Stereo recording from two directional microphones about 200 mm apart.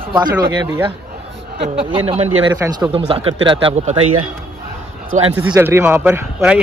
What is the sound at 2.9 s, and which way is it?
A man's voice, 30° right (ahead or behind).